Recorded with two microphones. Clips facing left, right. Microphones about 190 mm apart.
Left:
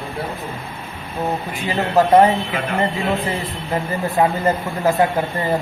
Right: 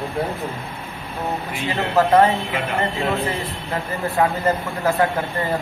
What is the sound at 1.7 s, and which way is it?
Speech, 15° left (ahead or behind).